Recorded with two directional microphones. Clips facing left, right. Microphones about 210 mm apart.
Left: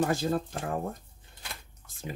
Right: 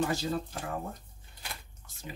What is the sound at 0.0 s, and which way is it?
Speech, 50° left (ahead or behind).